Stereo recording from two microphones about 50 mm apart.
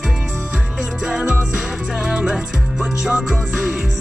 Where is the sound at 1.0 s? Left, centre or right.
Centre.